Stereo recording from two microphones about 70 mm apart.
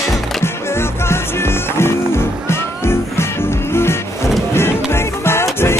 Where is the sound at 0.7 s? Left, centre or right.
Left.